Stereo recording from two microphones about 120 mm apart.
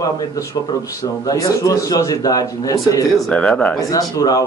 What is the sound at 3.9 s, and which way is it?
Speech, 30° left (ahead or behind).